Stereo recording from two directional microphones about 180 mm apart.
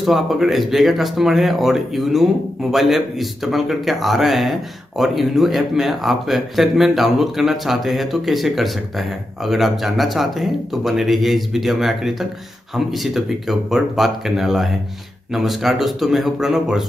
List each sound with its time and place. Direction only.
0.0 s speech: centre (ahead or behind)